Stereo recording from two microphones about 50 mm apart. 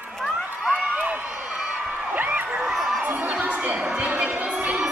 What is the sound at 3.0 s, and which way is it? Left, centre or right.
Crowd, right.